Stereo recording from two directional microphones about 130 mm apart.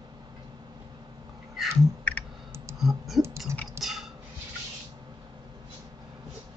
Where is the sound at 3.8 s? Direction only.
Centre (ahead or behind).